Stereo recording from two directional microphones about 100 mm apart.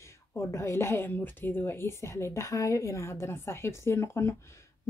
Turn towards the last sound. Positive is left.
turn(degrees=25)  # may be behind; listen again after turning